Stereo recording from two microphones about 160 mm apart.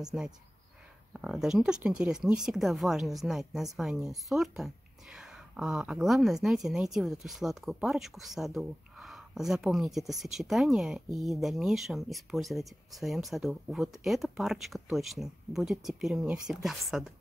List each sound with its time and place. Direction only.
0.0 s speech: 5° right (ahead or behind)